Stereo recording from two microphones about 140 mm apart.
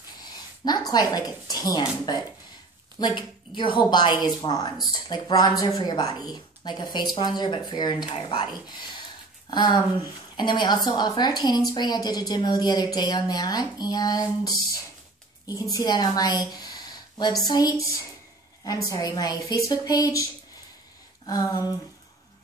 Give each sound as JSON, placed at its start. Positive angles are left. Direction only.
{"t": 0.2, "sound": "a woman's voice", "side_deg": 30}
{"t": 18.9, "sound": "a woman's voice", "side_deg": 25}
{"t": 21.3, "sound": "a woman's voice", "side_deg": 25}